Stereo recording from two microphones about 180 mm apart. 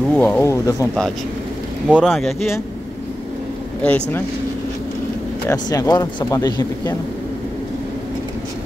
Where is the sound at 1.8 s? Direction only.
5° right (ahead or behind).